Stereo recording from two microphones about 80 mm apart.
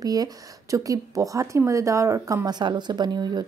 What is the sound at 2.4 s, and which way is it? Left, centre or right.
A woman's voice, right.